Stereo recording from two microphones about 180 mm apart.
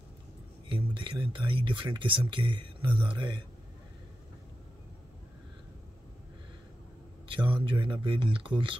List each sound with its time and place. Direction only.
0.7 s speech: 30° right (ahead or behind)
7.2 s speech: 25° right (ahead or behind)